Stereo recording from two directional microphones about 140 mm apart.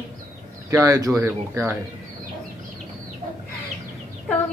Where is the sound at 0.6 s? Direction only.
20° right (ahead or behind).